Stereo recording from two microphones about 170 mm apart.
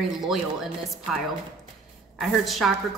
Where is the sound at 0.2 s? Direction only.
Centre (ahead or behind).